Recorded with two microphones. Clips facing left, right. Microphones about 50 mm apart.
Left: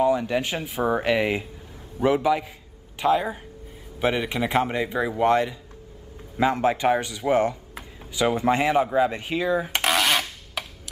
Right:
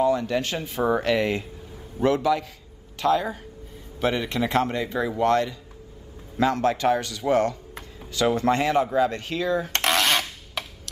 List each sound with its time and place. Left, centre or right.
0.0 s speech: centre